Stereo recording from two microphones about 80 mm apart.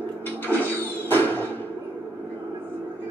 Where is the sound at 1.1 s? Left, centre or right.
Left.